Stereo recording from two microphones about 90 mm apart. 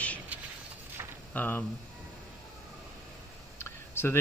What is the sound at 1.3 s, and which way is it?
Speech, 20° left (ahead or behind).